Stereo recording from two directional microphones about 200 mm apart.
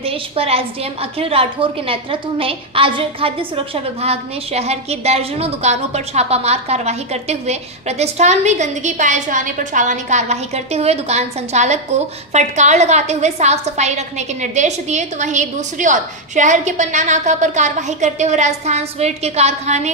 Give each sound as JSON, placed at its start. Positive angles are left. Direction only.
{"t": 0.0, "sound": "a woman's voice", "side_deg": -30}